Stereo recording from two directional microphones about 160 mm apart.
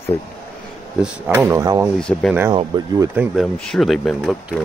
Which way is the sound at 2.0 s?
5° left (ahead or behind).